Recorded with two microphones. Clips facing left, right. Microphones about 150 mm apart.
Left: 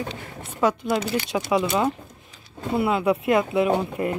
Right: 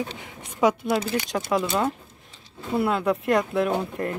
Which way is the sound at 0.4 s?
10° right (ahead or behind).